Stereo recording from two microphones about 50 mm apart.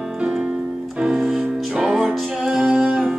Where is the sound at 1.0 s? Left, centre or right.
Centre.